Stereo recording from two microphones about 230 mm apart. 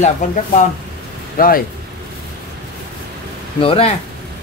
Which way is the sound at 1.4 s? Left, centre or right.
Left.